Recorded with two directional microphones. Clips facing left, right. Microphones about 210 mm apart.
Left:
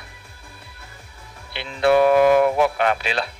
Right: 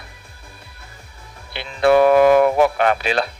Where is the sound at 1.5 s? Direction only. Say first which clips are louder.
Right 2 dB; 45° right (ahead or behind).